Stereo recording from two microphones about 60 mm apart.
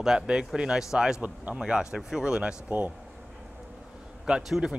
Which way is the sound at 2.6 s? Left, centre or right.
Right.